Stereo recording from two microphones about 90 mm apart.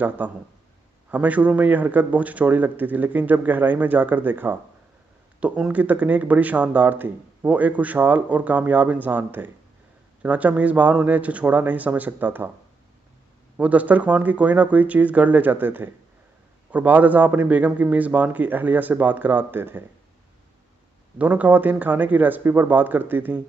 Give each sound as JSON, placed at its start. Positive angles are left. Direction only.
{"t": 0.2, "sound": "a man's voice", "side_deg": -20}
{"t": 13.6, "sound": "a man's voice", "side_deg": -15}
{"t": 21.2, "sound": "a man's voice", "side_deg": -15}